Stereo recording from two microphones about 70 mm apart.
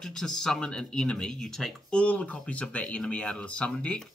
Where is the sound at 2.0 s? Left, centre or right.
Centre.